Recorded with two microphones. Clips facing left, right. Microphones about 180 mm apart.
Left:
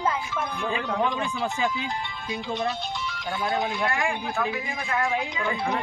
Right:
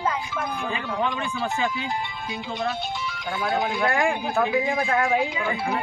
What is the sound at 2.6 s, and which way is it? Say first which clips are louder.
Speech: right 1 dB; centre (ahead or behind).